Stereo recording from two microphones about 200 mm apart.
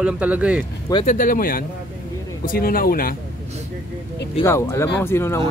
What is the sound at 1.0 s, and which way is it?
Speech, 45° left (ahead or behind).